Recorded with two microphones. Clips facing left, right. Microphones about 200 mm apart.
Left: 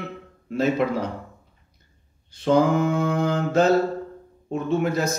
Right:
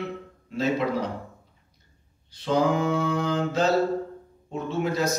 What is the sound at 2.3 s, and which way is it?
A man's voice, 55° left (ahead or behind).